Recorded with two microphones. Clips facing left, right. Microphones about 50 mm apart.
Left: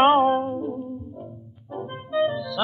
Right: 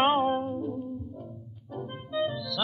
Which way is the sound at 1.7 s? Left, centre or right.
Left.